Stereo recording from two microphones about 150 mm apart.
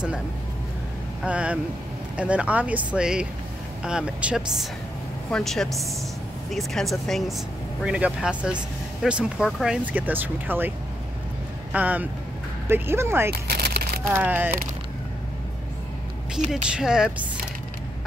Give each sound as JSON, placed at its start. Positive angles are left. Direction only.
{"t": 1.2, "sound": "speech", "side_deg": -10}
{"t": 11.7, "sound": "speech", "side_deg": -10}
{"t": 13.3, "sound": "a sound", "side_deg": -90}
{"t": 14.0, "sound": "speech", "side_deg": -15}
{"t": 16.3, "sound": "speech", "side_deg": -50}
{"t": 16.7, "sound": "speech", "side_deg": -5}